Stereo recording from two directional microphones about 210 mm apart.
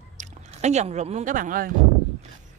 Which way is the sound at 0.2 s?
35° right (ahead or behind).